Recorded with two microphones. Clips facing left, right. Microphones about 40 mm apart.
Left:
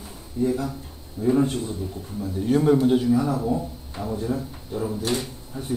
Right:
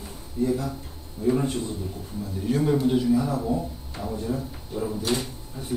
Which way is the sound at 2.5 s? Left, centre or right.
Left.